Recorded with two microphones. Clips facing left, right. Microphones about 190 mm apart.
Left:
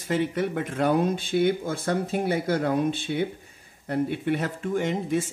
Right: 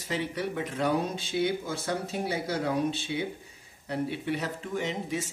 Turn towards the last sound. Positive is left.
turn(degrees=50)  # may be behind; listen again after turning